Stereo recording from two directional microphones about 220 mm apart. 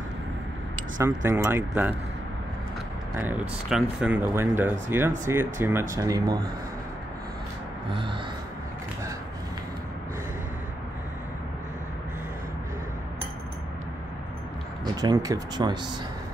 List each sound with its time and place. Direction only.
0.9 s speech: 10° right (ahead or behind)
3.2 s speech: 5° right (ahead or behind)
7.9 s speech: 25° right (ahead or behind)
15.0 s speech: 15° right (ahead or behind)